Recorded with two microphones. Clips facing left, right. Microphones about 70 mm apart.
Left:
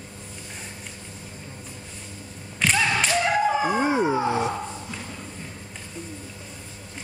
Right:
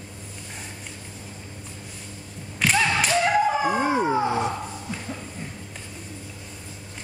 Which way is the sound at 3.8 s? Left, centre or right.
Centre.